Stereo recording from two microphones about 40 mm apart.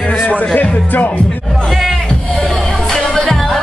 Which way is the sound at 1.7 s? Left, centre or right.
Centre.